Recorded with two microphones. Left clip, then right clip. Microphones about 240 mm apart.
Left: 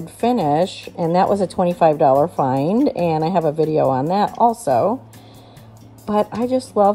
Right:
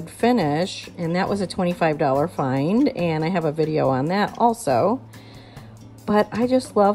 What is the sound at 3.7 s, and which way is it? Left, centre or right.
Speech, centre.